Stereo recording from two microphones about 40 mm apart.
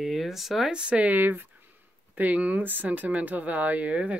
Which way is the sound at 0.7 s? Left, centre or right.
Right.